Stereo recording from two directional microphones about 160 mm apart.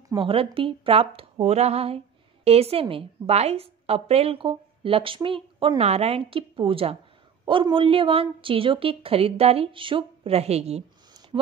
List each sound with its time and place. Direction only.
0.1 s a woman's voice: 35° right (ahead or behind)